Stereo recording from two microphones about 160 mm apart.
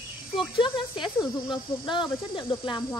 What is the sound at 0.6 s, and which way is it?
A woman's voice, 30° left (ahead or behind).